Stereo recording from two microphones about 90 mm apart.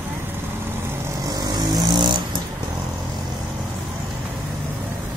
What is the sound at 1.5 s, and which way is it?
Vehicle, 45° right (ahead or behind).